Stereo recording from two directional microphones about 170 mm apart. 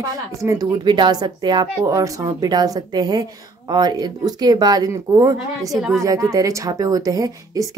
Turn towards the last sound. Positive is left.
turn(degrees=-20)  # may be behind; listen again after turning